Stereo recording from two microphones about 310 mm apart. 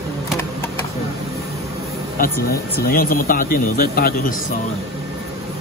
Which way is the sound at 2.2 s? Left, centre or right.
Left.